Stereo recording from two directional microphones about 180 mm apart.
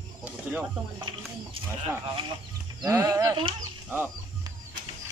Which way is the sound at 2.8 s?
15° right (ahead or behind).